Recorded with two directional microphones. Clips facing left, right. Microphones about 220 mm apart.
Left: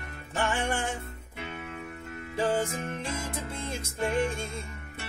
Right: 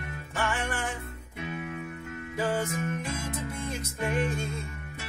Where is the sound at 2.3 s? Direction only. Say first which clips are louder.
Left 2 dB; 30° left (ahead or behind).